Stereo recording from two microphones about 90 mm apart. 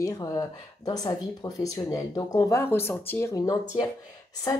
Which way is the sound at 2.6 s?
25° left (ahead or behind).